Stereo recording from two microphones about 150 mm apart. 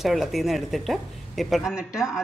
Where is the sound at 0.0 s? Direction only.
Centre (ahead or behind).